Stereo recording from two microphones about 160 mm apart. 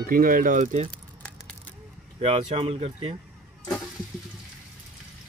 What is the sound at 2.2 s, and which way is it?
Speech, 40° right (ahead or behind).